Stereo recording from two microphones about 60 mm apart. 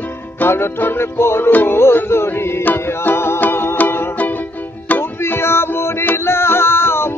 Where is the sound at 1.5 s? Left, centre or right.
Left.